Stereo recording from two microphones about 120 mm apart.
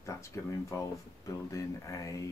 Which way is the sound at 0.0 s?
25° left (ahead or behind).